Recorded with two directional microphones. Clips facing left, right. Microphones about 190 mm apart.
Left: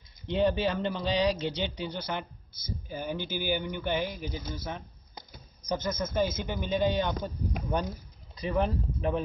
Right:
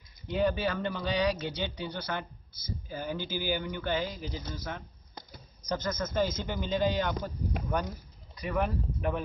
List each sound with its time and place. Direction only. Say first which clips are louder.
0.3 s speech: left 2 dB; 25° left (ahead or behind)